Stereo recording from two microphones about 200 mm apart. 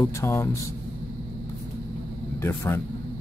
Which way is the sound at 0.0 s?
10° left (ahead or behind).